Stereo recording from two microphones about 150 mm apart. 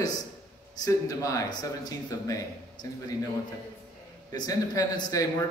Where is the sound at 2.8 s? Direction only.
60° left (ahead or behind).